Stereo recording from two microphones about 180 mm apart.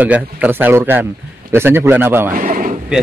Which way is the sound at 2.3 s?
50° right (ahead or behind).